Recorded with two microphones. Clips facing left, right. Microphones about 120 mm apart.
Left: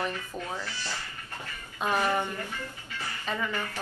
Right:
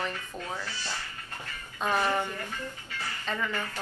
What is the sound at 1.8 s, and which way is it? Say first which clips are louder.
A woman's voice: even; 15° left (ahead or behind).